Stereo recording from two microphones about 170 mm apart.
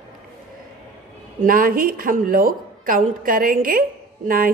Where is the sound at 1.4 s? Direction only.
55° right (ahead or behind).